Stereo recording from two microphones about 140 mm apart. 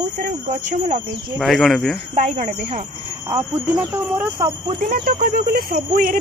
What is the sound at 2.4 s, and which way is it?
Speech, 65° right (ahead or behind).